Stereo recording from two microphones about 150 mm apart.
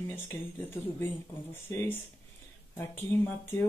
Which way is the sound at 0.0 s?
15° left (ahead or behind).